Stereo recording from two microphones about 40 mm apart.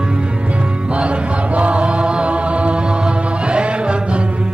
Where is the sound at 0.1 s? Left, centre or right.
Right.